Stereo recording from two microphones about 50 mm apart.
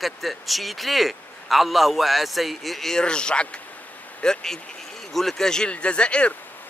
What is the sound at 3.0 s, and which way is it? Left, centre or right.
Speech, centre.